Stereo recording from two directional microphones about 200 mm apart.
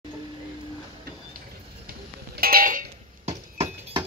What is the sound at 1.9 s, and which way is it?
Music, 50° right (ahead or behind).